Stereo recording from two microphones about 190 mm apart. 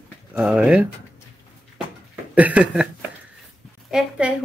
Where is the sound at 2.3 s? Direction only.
5° right (ahead or behind).